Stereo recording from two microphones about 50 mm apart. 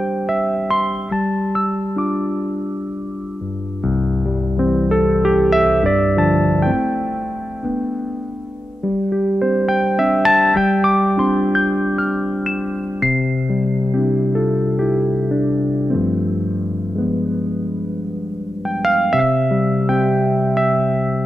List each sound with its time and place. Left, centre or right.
0.0 s electric piano: centre
4.6 s music: centre
6.7 s keyboard: centre
8.8 s music: centre
18.8 s music: centre